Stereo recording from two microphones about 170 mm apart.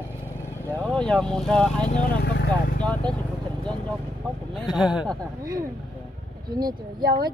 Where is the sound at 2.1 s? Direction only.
75° left (ahead or behind).